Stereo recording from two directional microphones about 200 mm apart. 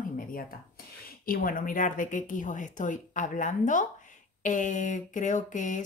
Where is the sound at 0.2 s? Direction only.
45° left (ahead or behind).